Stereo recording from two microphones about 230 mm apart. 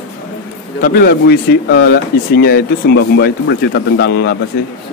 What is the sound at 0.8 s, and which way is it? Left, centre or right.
Speech, left.